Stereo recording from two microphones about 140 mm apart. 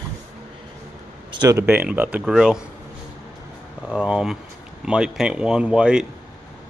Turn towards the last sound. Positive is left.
turn(degrees=-5)  # may be behind; listen again after turning